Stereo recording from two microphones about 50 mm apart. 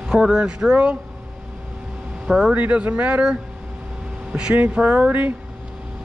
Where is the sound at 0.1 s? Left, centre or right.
Centre.